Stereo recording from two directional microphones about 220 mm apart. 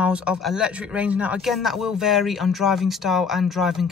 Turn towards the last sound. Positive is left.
turn(degrees=0)  # may be behind; listen again after turning